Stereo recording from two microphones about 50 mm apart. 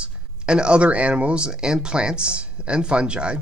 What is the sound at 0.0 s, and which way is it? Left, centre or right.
Speech, centre.